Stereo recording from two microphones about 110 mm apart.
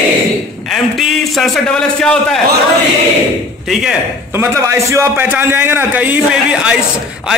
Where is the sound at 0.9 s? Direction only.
Centre (ahead or behind).